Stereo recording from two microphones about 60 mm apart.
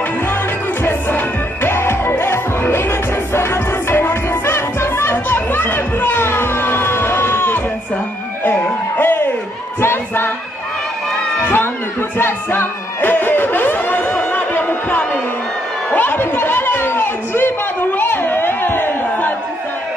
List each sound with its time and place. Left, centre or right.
0.8 s music: left
3.9 s music: left
9.0 s music: left
9.8 s choir: left
11.4 s a sound: left
12.2 s music: left
15.9 s a sound: left